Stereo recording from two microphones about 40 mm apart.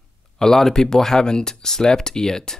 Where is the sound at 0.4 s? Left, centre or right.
Centre.